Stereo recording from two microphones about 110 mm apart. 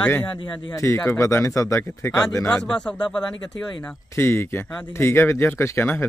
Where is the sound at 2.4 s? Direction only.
10° left (ahead or behind).